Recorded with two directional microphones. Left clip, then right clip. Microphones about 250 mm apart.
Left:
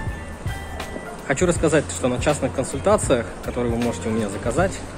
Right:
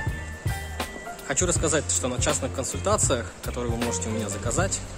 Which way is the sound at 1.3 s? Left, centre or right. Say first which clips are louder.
Left 6 dB; centre.